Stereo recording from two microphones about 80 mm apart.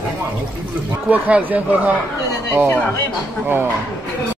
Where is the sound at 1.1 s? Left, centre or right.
Centre.